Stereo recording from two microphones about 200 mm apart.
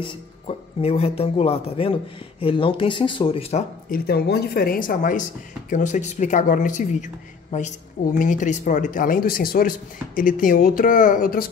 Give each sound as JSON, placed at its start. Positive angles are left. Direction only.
{"t": 0.0, "sound": "speech", "side_deg": 25}
{"t": 3.9, "sound": "a woman's voice", "side_deg": 50}